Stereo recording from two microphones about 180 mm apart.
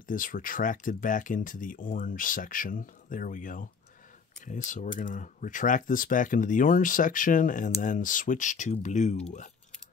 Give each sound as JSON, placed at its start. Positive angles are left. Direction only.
{"t": 0.1, "sound": "speech", "side_deg": 50}